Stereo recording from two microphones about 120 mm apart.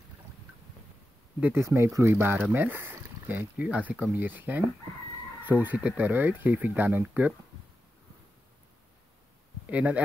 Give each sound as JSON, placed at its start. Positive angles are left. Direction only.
{"t": 1.4, "sound": "speech", "side_deg": -20}
{"t": 9.7, "sound": "speech", "side_deg": -10}